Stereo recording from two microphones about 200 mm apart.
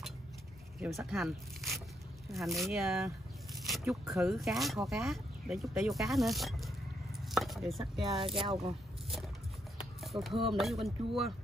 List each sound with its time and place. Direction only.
0.7 s speech: centre (ahead or behind)
3.5 s zipper: centre (ahead or behind)
4.1 s speech: centre (ahead or behind)
7.2 s chopping: centre (ahead or behind)
8.2 s speech: 25° right (ahead or behind)
10.0 s speech: centre (ahead or behind)